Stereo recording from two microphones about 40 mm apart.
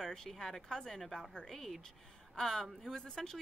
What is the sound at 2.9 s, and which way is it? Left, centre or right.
Speech, centre.